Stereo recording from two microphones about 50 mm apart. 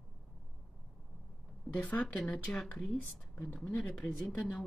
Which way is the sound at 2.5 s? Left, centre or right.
Centre.